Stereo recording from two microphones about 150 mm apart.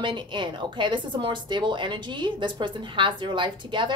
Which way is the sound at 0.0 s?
35° right (ahead or behind).